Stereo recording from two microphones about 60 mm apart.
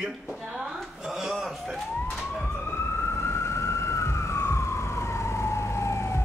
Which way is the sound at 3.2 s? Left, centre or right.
Left.